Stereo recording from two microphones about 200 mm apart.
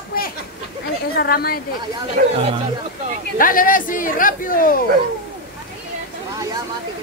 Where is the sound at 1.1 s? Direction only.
50° left (ahead or behind).